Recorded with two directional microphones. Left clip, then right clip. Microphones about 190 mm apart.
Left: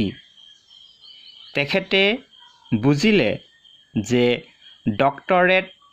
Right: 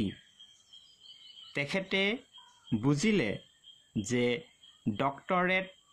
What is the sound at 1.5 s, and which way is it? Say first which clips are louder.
Speech: left 12 dB; 20° left (ahead or behind).